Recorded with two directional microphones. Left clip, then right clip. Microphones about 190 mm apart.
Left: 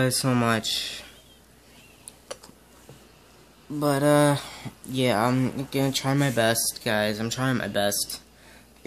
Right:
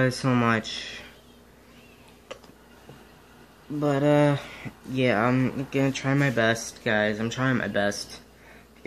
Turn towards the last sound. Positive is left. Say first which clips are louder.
# even
turn(degrees=20)  # may be behind; listen again after turning